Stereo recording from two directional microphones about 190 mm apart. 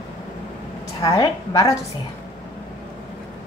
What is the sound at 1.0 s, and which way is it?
Speech, 20° left (ahead or behind).